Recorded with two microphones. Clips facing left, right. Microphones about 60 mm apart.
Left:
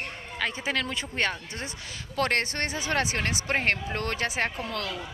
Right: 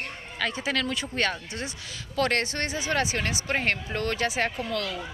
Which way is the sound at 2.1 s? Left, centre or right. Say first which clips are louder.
Right 1 dB; left.